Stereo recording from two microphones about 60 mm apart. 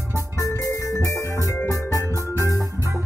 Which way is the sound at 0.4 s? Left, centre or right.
Left.